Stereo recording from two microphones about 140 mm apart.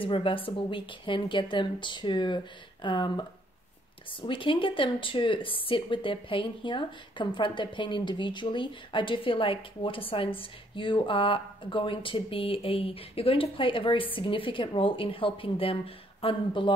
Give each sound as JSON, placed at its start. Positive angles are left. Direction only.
{"t": 0.0, "sound": "speech", "side_deg": 40}
{"t": 4.3, "sound": "speech", "side_deg": 35}